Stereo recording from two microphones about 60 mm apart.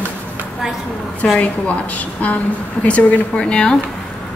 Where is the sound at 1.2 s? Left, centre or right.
Centre.